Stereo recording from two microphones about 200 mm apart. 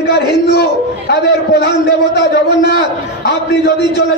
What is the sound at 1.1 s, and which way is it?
Speech, 50° left (ahead or behind).